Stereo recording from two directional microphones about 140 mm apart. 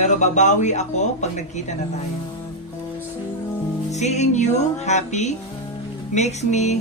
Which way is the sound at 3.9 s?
55° left (ahead or behind).